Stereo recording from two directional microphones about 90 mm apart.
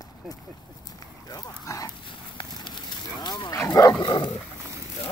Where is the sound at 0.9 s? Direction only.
45° left (ahead or behind).